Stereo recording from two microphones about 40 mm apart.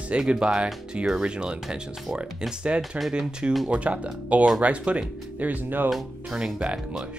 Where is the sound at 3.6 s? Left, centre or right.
Right.